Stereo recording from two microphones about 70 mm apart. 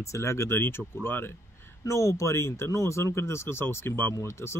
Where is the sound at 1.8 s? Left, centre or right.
Left.